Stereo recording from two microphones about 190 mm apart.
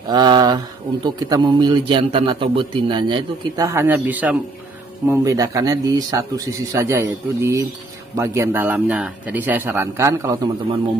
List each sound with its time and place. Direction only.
0.1 s a man's voice: 20° right (ahead or behind)